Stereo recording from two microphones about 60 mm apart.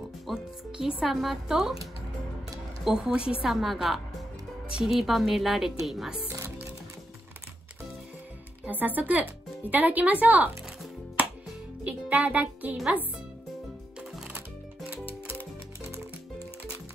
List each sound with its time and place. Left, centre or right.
0.3 s music: centre
1.0 s a woman's voice: centre
2.8 s a woman's voice: centre
3.4 s a woman's voice: centre
8.6 s speech: right
11.8 s music: right